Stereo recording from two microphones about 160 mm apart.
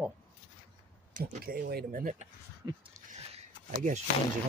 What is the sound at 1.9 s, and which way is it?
Speech, 55° right (ahead or behind).